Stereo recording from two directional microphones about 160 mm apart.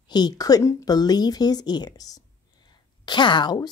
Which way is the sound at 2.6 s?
30° left (ahead or behind).